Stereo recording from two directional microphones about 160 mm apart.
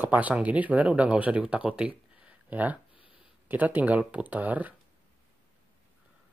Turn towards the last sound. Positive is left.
turn(degrees=-10)  # may be behind; listen again after turning